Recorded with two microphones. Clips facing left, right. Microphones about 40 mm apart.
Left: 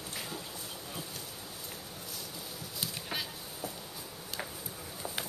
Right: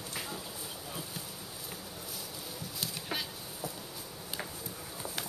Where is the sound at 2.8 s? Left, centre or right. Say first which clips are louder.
Even; centre.